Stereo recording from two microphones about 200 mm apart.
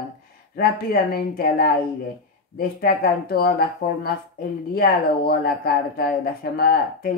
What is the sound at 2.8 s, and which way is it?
Speech, 50° left (ahead or behind).